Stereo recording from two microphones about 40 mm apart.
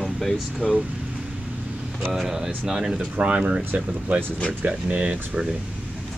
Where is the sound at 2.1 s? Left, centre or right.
Centre.